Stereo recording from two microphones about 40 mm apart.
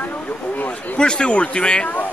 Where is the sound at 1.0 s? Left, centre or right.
Left.